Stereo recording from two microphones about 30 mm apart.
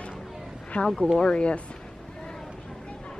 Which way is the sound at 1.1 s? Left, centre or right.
Left.